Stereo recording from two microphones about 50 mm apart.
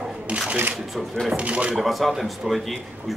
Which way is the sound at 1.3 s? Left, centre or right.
Right.